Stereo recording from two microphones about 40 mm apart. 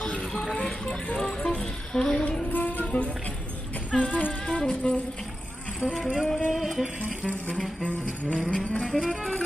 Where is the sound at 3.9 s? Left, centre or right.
Centre.